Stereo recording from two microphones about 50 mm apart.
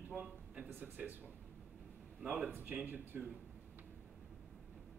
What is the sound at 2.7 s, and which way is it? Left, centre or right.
Speech, right.